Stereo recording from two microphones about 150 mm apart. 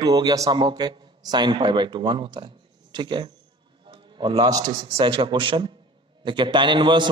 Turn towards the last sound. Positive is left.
turn(degrees=-30)  # may be behind; listen again after turning